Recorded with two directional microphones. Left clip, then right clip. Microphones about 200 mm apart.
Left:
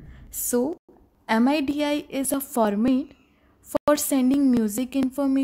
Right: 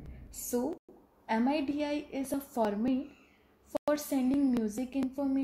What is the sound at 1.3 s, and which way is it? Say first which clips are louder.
A woman's voice: left 9 dB; 30° left (ahead or behind).